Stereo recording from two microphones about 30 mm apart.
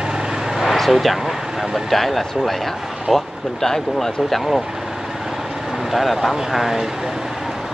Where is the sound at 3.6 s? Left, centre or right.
Centre.